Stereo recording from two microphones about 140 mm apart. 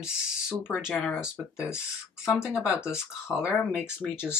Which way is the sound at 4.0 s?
15° left (ahead or behind).